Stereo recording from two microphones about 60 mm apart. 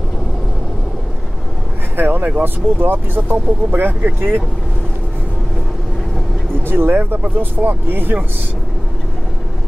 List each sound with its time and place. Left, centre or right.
2.0 s a sound: right
2.4 s speech: right
6.6 s speech: right